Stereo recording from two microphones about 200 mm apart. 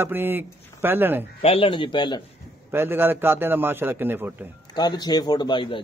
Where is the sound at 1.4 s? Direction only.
30° left (ahead or behind).